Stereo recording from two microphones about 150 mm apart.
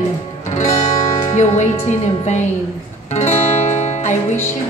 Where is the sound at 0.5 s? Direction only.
50° left (ahead or behind).